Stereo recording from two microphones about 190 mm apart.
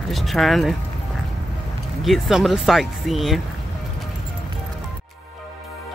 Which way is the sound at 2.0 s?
Centre (ahead or behind).